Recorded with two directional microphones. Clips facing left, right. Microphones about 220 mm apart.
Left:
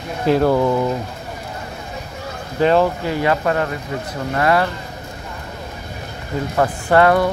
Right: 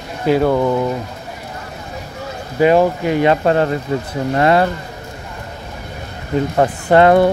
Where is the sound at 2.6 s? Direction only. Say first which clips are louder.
Right 3 dB; 15° right (ahead or behind).